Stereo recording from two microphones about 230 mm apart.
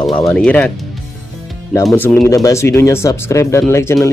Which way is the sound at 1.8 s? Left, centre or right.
Centre.